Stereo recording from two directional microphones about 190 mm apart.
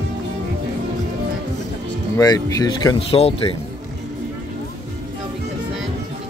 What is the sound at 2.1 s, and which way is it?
Speech, 20° left (ahead or behind).